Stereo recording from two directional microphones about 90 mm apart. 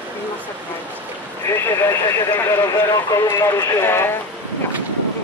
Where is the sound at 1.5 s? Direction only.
30° left (ahead or behind).